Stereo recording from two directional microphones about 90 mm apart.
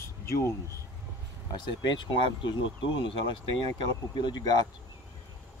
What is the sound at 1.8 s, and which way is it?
Speech, 60° left (ahead or behind).